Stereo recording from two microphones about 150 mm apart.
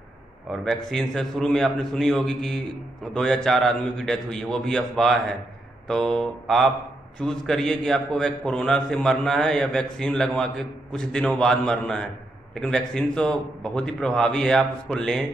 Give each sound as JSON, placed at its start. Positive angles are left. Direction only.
{"t": 0.5, "sound": "a man's voice", "side_deg": 0}